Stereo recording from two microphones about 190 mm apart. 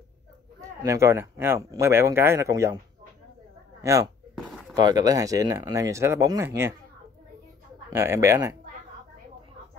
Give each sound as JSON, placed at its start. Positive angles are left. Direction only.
{"t": 0.6, "sound": "speech", "side_deg": -15}
{"t": 3.8, "sound": "speech", "side_deg": -15}
{"t": 4.5, "sound": "a sound", "side_deg": -5}
{"t": 4.7, "sound": "speech", "side_deg": -20}
{"t": 7.9, "sound": "speech", "side_deg": -15}